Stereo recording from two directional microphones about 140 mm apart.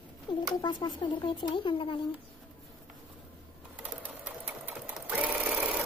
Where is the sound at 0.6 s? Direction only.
30° left (ahead or behind).